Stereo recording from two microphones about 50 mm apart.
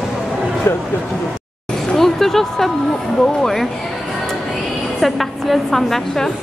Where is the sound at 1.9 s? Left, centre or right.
Centre.